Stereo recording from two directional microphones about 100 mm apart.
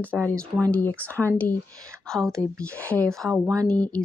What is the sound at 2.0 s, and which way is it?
Speech, 5° left (ahead or behind).